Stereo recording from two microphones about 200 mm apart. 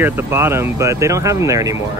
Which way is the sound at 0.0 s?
10° right (ahead or behind).